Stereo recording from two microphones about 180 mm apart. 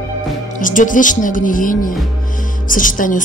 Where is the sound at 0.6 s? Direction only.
45° left (ahead or behind).